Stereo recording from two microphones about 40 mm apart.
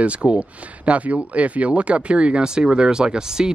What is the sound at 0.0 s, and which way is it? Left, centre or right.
Speech, right.